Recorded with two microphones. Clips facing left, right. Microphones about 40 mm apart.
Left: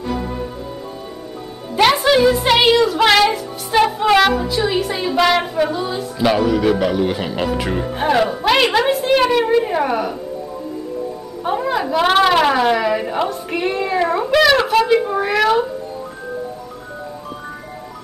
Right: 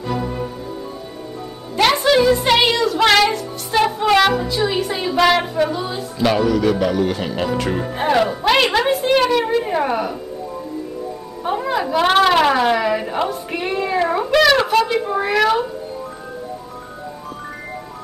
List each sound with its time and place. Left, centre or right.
1.8 s a woman's voice: centre
11.4 s a woman's voice: centre